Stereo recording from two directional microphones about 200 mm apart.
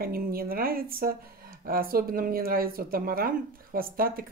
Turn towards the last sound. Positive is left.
turn(degrees=-45)  # may be behind; listen again after turning